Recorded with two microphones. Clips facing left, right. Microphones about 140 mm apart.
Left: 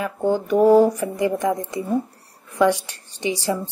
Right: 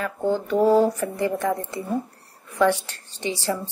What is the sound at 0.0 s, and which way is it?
A woman's voice, 15° left (ahead or behind).